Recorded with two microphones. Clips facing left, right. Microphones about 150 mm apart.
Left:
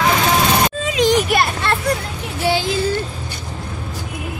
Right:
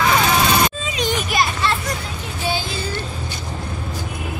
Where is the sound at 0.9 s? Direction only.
85° left; by 1.8 s 60° left (ahead or behind).